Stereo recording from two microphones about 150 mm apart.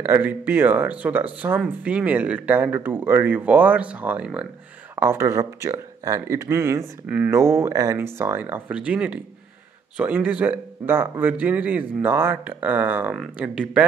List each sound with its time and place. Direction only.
0.0 s speech: 15° right (ahead or behind)
4.9 s speech: 20° right (ahead or behind)